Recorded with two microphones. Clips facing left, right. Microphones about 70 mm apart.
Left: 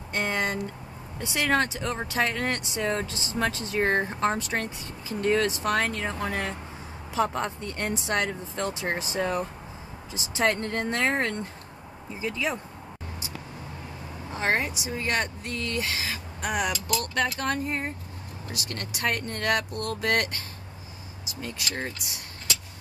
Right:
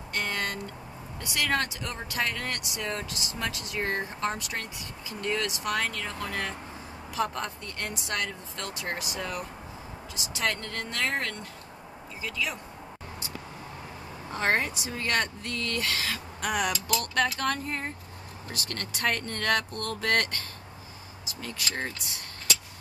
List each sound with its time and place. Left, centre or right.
0.1 s speech: centre
14.3 s speech: centre
17.4 s speech: centre